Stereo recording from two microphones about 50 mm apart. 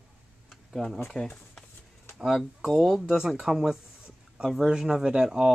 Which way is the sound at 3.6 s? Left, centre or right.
Centre.